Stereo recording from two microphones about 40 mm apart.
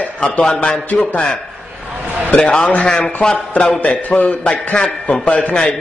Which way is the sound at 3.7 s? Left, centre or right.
Left.